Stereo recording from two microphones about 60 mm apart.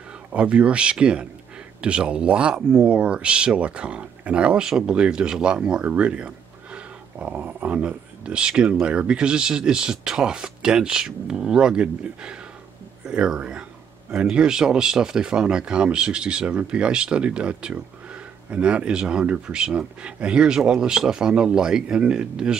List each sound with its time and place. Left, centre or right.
0.3 s speech: right